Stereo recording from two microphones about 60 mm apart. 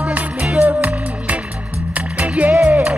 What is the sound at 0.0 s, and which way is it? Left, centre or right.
Music, right.